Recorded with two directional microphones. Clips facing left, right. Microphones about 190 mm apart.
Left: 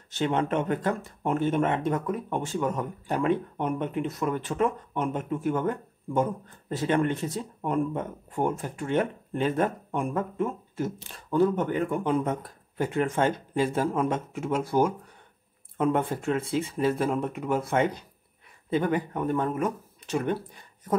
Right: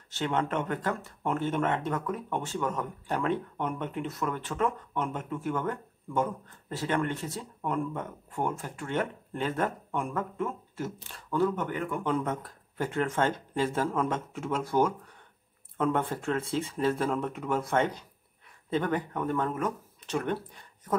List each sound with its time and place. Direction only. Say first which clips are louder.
0.1 s speech: left 4 dB; 20° left (ahead or behind)